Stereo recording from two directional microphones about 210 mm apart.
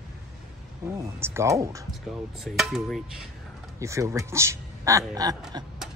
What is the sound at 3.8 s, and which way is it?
Speech, 15° right (ahead or behind).